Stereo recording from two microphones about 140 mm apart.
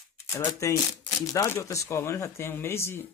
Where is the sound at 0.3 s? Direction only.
20° left (ahead or behind).